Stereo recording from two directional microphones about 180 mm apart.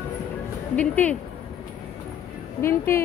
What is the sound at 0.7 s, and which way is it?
Speech, 10° left (ahead or behind).